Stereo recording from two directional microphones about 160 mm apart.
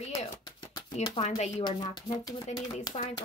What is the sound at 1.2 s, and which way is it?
Speech, 45° left (ahead or behind).